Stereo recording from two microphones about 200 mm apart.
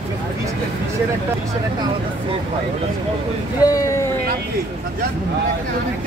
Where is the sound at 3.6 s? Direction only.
15° left (ahead or behind).